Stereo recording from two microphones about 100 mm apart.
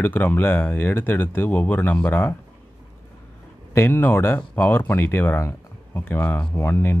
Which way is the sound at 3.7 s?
20° left (ahead or behind).